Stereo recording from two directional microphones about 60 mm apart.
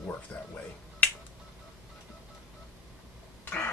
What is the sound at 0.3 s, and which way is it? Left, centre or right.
Speech, left.